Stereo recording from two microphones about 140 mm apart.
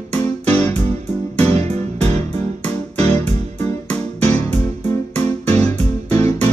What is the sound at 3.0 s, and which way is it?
Music, 50° right (ahead or behind).